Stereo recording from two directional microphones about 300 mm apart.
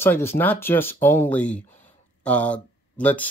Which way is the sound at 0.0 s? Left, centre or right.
Centre.